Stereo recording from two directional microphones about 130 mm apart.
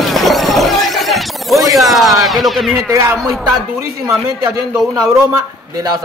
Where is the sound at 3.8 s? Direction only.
25° right (ahead or behind).